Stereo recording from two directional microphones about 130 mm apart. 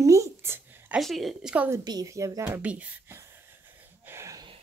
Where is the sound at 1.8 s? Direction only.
30° right (ahead or behind).